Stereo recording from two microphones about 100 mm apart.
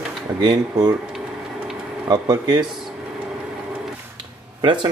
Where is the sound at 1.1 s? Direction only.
5° right (ahead or behind).